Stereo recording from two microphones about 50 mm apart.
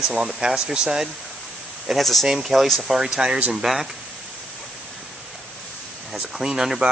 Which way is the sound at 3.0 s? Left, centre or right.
Centre.